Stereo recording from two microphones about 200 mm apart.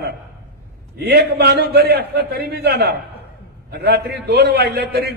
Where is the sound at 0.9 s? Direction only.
55° right (ahead or behind).